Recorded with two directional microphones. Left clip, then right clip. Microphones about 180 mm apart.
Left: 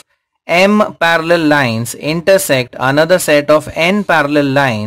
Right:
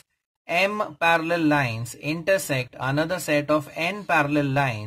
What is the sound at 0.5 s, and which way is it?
Speech, 30° left (ahead or behind).